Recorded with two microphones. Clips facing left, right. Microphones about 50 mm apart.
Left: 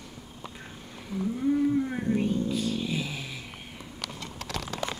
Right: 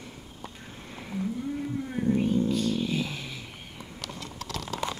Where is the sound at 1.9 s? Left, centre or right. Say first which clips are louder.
Right 1 dB; centre.